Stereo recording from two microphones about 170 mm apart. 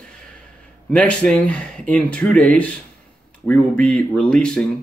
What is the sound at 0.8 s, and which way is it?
Speech, 5° left (ahead or behind).